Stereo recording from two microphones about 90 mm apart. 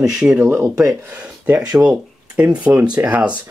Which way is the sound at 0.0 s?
10° right (ahead or behind).